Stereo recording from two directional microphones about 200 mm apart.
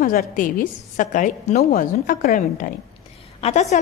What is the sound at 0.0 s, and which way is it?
A woman's voice, 40° left (ahead or behind).